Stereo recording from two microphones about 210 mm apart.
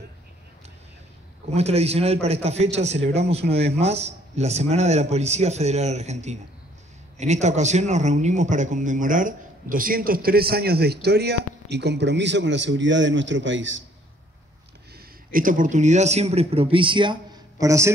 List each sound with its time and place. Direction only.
1.5 s a man's voice: 30° right (ahead or behind); by 13.8 s 60° right (ahead or behind)
15.3 s speech: 40° right (ahead or behind); by 17.9 s 15° right (ahead or behind)